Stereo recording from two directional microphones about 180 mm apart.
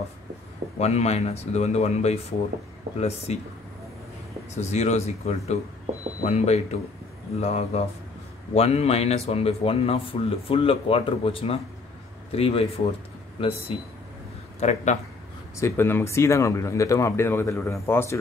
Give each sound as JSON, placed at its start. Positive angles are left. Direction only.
{"t": 0.7, "sound": "speech", "side_deg": 35}
{"t": 4.6, "sound": "speech", "side_deg": 40}
{"t": 15.5, "sound": "speech", "side_deg": 15}